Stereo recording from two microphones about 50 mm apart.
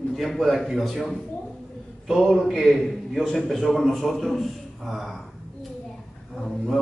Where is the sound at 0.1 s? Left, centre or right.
Centre.